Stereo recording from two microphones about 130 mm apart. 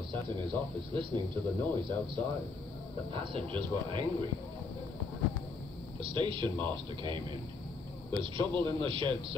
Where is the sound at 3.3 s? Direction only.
40° right (ahead or behind).